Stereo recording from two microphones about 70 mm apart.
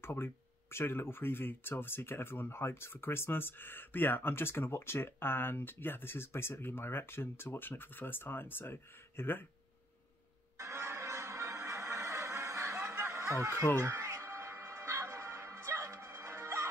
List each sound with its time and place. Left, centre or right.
0.0 s speech: left
10.6 s music: right
13.0 s a sound: right
13.7 s music: right